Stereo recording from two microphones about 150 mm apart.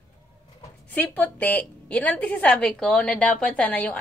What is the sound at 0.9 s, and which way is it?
A woman's voice, 10° left (ahead or behind).